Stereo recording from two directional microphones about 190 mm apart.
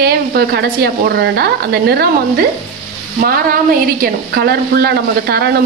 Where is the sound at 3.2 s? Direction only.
50° right (ahead or behind).